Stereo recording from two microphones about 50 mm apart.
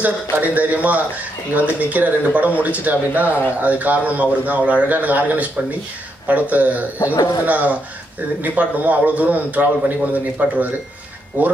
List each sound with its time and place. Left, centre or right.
0.0 s a man's voice: right